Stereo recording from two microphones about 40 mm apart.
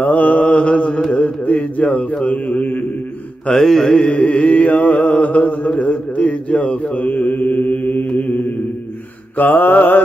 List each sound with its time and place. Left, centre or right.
0.0 s mantra: left
0.4 s mantra: left
3.5 s mantra: centre
4.1 s music: left
6.2 s speech: left
7.0 s mantra: left
9.4 s mantra: left